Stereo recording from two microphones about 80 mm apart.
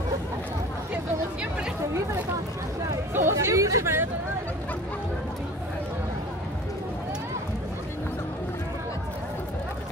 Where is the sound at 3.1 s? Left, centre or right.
Right.